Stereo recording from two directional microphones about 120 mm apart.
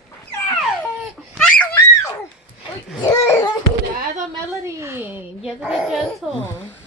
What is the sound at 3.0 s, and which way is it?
Speech, 35° left (ahead or behind).